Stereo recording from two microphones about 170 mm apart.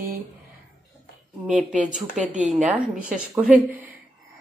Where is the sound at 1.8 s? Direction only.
5° right (ahead or behind).